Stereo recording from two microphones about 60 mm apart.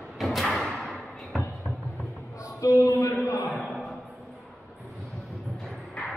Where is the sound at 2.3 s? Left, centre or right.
Left.